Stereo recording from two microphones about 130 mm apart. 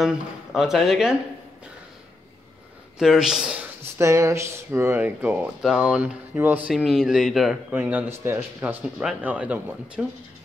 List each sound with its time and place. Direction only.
0.0 s speech: 5° right (ahead or behind)
3.0 s speech: 5° right (ahead or behind)
3.8 s speech: 20° right (ahead or behind)
6.7 s speech: 5° right (ahead or behind)
7.7 s speech: 15° right (ahead or behind)